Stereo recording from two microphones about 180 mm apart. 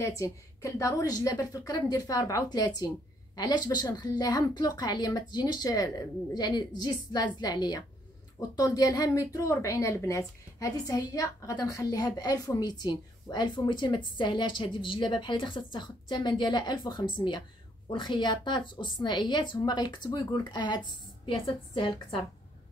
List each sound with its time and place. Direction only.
0.0 s a woman's voice: 15° left (ahead or behind)